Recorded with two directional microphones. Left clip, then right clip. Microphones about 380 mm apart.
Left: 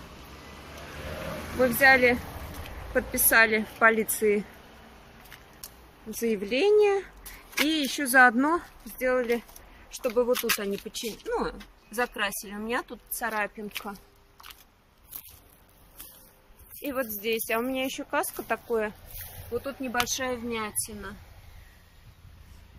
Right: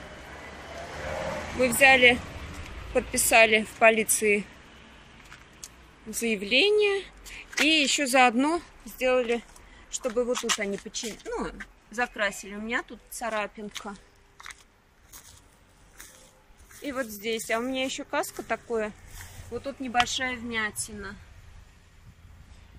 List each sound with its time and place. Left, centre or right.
1.6 s speech: centre
6.0 s speech: centre
10.3 s speech: centre
16.8 s speech: centre